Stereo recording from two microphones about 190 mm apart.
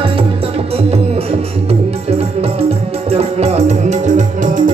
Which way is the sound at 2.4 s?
30° right (ahead or behind).